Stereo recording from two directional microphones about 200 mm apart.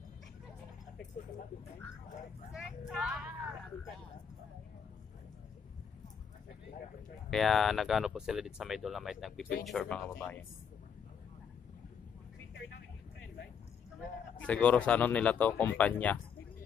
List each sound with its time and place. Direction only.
2.9 s speech: centre (ahead or behind)
7.2 s speech: centre (ahead or behind)
14.4 s speech: 5° left (ahead or behind)